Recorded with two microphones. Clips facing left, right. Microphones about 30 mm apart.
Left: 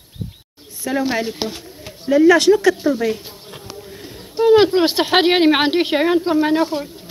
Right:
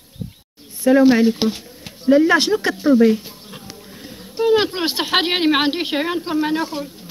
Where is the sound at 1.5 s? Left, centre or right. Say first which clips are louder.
Right 5 dB; centre.